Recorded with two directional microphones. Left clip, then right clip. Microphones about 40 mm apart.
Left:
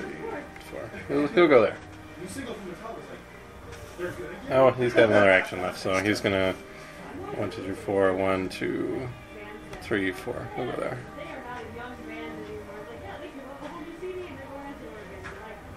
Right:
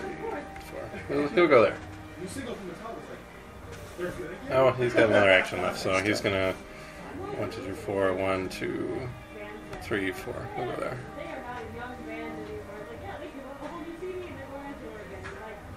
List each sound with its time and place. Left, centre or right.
0.0 s music: centre
1.2 s speech: centre
4.0 s speech: centre
4.5 s a man's voice: left
5.9 s speech: left
6.1 s a man's voice: left
7.6 s speech: centre
11.1 s music: centre
11.8 s a sound: centre